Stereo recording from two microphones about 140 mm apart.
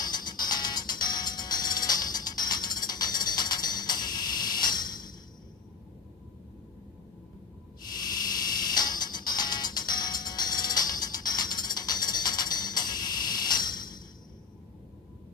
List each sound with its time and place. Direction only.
0.0 s music: 30° left (ahead or behind)
8.7 s music: 30° left (ahead or behind)